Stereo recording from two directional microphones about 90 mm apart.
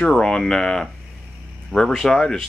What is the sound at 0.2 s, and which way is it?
Speech, 5° left (ahead or behind).